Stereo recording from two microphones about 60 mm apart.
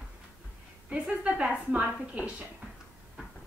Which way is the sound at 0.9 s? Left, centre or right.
Centre.